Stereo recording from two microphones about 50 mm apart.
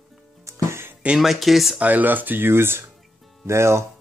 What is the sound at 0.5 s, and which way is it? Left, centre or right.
Music, right.